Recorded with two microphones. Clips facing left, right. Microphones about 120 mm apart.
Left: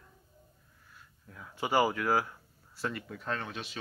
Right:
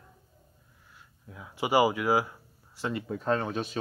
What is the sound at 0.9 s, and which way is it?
Speech, 10° right (ahead or behind).